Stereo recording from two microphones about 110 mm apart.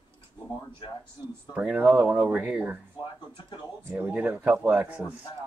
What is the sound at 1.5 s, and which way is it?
Speech, 10° right (ahead or behind).